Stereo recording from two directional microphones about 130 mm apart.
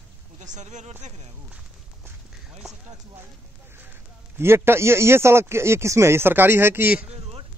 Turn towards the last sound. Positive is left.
turn(degrees=-15)  # may be behind; listen again after turning